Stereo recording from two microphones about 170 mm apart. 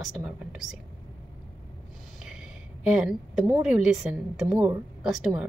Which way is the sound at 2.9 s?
Centre (ahead or behind).